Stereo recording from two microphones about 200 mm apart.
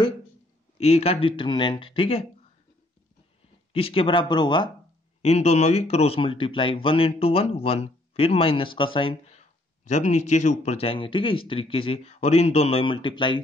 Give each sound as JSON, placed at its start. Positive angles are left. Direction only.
{"t": 0.7, "sound": "speech", "side_deg": 30}
{"t": 3.7, "sound": "speech", "side_deg": 30}
{"t": 5.2, "sound": "speech", "side_deg": 35}